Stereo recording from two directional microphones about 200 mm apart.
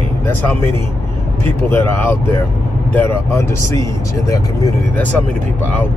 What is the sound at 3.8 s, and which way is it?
Speech, 15° left (ahead or behind).